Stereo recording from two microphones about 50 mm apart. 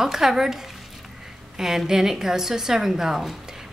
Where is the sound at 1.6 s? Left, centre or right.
Centre.